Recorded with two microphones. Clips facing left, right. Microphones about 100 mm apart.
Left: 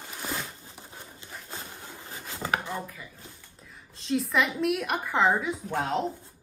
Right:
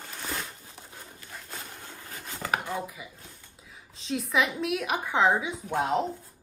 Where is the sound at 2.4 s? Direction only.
15° right (ahead or behind).